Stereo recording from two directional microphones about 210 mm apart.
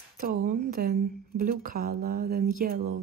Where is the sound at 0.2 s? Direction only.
40° right (ahead or behind).